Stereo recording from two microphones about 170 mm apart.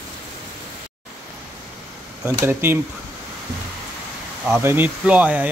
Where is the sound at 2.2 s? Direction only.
15° right (ahead or behind).